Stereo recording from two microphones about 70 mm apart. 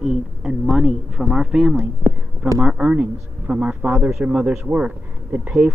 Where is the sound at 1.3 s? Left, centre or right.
Centre.